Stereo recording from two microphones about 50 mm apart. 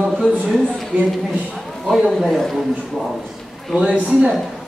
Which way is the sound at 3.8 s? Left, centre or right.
Right.